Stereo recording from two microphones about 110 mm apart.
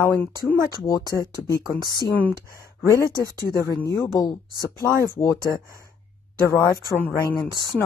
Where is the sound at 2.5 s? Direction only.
30° left (ahead or behind).